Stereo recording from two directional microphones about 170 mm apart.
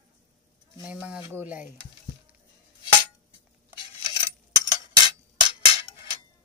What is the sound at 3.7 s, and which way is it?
Cutlery, 30° left (ahead or behind).